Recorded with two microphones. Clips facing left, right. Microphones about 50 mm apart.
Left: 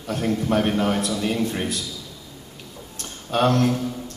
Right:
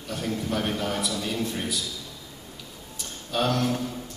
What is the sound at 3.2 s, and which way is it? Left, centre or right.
Speech, left.